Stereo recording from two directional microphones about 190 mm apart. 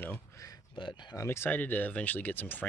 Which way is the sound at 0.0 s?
15° left (ahead or behind).